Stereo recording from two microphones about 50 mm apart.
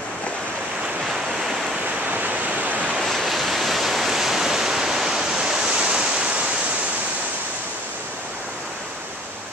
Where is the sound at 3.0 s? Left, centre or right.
Centre; by 6.5 s right.